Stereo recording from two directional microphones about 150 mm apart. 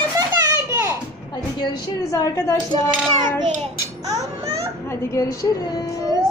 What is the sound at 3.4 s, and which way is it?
Child singing, 50° right (ahead or behind).